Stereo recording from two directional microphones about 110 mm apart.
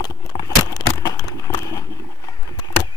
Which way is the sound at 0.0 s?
35° left (ahead or behind).